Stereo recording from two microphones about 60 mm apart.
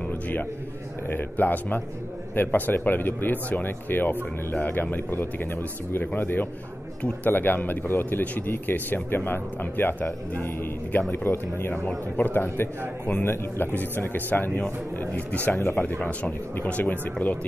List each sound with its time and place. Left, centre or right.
0.1 s a man's voice: left
16.0 s speech: centre